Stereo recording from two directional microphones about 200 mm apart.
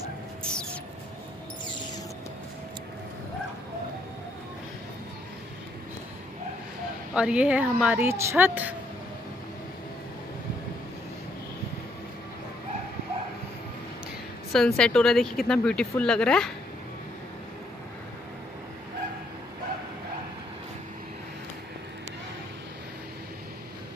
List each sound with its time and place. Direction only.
0.4 s mouse: 5° left (ahead or behind)
7.2 s a woman's voice: 5° right (ahead or behind)
14.5 s speech: 5° left (ahead or behind)